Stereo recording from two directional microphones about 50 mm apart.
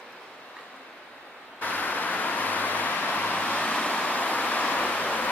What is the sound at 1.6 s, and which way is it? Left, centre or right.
Vehicle, left.